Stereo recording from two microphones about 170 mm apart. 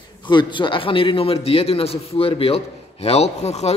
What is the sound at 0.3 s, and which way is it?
A man's voice, 25° left (ahead or behind).